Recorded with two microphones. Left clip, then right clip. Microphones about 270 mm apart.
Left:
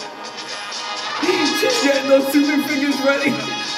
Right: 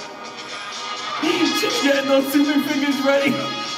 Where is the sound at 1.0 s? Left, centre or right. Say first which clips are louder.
Left 1 dB; left.